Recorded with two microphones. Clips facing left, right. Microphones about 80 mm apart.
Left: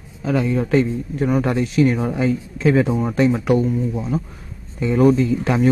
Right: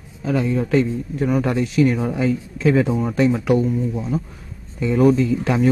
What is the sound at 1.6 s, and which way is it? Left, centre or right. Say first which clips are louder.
Speech: even; left.